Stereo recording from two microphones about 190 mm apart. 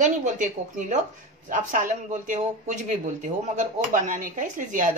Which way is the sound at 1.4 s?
40° right (ahead or behind).